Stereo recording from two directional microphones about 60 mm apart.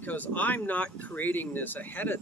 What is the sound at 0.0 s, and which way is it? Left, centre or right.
Speech, left.